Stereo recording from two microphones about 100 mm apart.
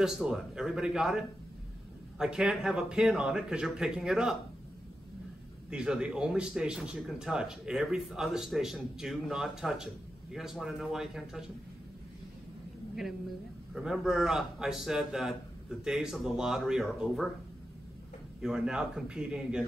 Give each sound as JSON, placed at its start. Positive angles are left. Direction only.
{"t": 0.0, "sound": "speech", "side_deg": -5}
{"t": 5.7, "sound": "speech", "side_deg": -5}
{"t": 13.7, "sound": "speech", "side_deg": -5}
{"t": 18.4, "sound": "speech", "side_deg": -5}